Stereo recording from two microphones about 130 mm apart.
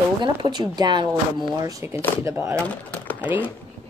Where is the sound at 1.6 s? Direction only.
20° right (ahead or behind).